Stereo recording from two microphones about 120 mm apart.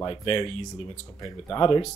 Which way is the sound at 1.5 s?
35° left (ahead or behind).